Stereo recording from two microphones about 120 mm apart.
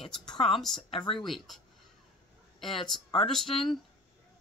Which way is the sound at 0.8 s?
50° left (ahead or behind).